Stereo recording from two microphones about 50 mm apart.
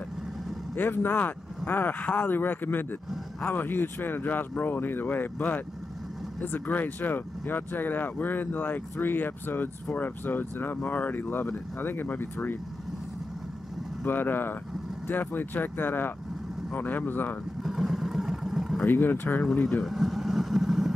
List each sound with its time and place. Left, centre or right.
0.7 s speech: left
14.0 s speech: left
17.6 s vehicle: centre
18.9 s speech: left
19.8 s vehicle: centre